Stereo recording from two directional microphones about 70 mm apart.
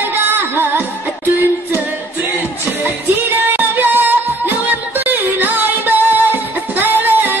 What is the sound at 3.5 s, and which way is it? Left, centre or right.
Music, right.